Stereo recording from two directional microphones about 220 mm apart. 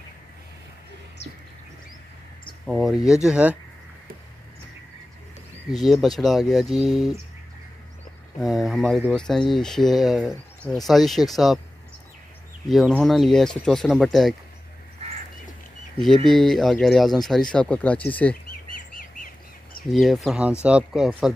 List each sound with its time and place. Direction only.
1.2 s bird: 50° left (ahead or behind)
2.6 s speech: centre (ahead or behind)
5.7 s speech: centre (ahead or behind)
8.4 s speech: centre (ahead or behind)
12.6 s speech: centre (ahead or behind)
15.0 s bird: 25° right (ahead or behind)
16.3 s speech: centre (ahead or behind)
19.9 s speech: centre (ahead or behind)